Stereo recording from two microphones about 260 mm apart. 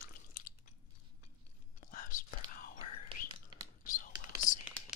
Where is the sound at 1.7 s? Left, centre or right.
Left.